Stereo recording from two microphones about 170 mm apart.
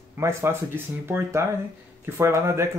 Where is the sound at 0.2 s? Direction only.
15° right (ahead or behind).